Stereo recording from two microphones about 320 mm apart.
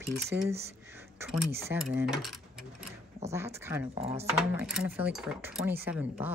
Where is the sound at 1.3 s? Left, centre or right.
Right.